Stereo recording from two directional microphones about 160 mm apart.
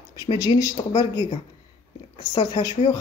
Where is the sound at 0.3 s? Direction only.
25° left (ahead or behind).